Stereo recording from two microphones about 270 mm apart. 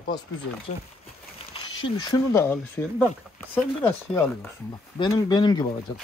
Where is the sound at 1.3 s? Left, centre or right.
Left.